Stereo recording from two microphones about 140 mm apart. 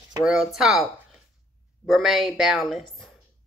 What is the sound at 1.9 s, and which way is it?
Speech, centre (ahead or behind).